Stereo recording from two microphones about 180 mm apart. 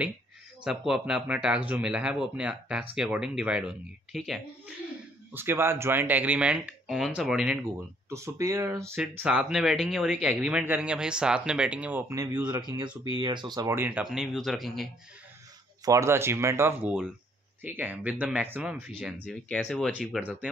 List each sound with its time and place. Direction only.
0.7 s speech: 5° right (ahead or behind)
5.3 s speech: 10° right (ahead or behind)
8.1 s speech: 15° right (ahead or behind); by 14.9 s centre (ahead or behind)
15.8 s speech: 15° right (ahead or behind)